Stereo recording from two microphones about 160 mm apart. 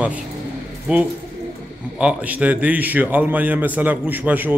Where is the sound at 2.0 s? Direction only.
10° right (ahead or behind).